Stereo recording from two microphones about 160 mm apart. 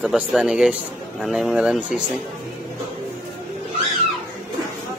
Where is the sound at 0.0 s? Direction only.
Centre (ahead or behind).